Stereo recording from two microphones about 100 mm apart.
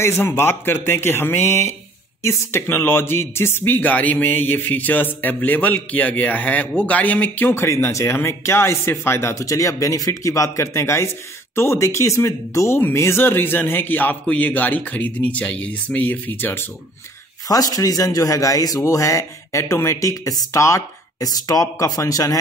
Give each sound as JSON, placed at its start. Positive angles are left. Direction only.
{"t": 0.0, "sound": "a man's voice", "side_deg": 25}
{"t": 17.5, "sound": "a man's voice", "side_deg": 35}